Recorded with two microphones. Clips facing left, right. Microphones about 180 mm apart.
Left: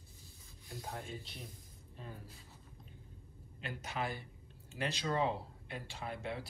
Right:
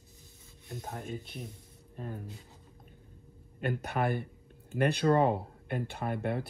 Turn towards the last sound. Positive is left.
turn(degrees=-55)  # may be behind; listen again after turning